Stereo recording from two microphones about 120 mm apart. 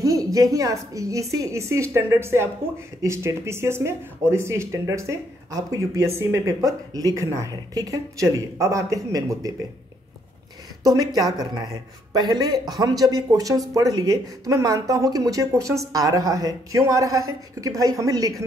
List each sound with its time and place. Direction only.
0.0 s speech: 30° right (ahead or behind)
10.8 s speech: 30° right (ahead or behind)